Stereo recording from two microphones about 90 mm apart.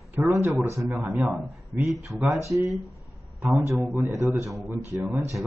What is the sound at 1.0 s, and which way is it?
Speech, 5° right (ahead or behind).